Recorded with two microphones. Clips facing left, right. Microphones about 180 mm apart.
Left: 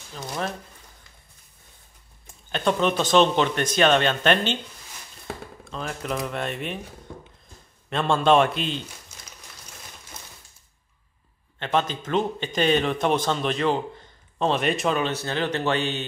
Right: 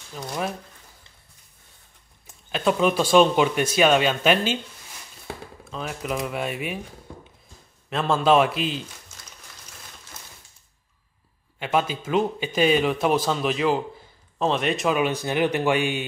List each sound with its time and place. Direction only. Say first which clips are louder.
0.1 s a man's voice: right 1 dB; 5° right (ahead or behind)
2.2 s speech: right 1 dB; 5° right (ahead or behind)
7.9 s a man's voice: even; centre (ahead or behind)
11.6 s a man's voice: right 1 dB; 10° right (ahead or behind)